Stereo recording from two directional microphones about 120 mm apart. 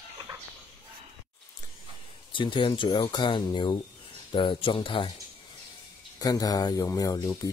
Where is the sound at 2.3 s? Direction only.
45° left (ahead or behind).